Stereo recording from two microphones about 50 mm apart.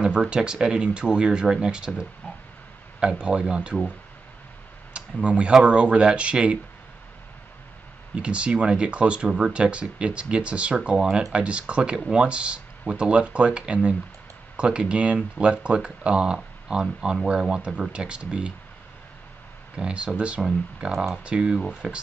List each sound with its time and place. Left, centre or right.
0.0 s speech: centre
4.9 s speech: right
8.2 s speech: right
19.8 s speech: right
20.9 s speech: centre
21.2 s speech: centre